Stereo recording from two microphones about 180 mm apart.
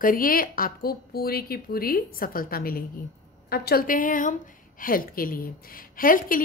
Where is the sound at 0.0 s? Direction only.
50° left (ahead or behind).